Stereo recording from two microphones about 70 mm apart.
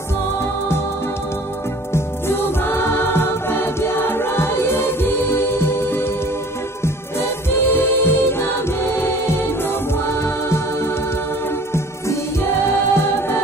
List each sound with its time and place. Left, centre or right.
1.9 s music: left
12.6 s music: left